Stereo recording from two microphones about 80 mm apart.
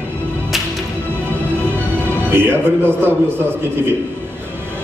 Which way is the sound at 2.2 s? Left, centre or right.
Right.